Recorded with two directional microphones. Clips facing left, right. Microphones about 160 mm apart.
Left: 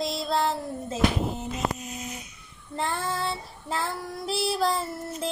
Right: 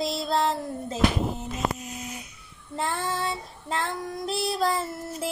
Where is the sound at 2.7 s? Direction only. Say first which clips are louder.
Even; centre (ahead or behind).